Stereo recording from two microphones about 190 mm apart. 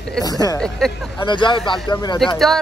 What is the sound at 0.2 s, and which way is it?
Speech, 20° left (ahead or behind).